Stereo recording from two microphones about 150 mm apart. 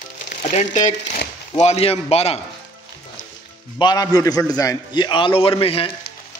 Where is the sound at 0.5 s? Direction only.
50° left (ahead or behind).